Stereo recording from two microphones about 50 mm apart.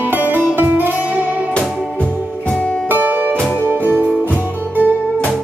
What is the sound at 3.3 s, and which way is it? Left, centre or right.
Music, left.